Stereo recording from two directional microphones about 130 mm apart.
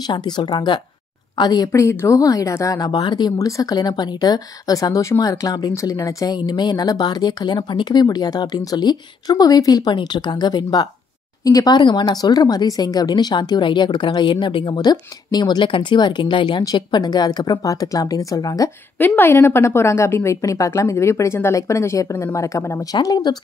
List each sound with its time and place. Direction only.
0.0 s a woman's voice: 35° left (ahead or behind)
18.9 s a woman's voice: 15° left (ahead or behind); by 23.3 s 30° left (ahead or behind)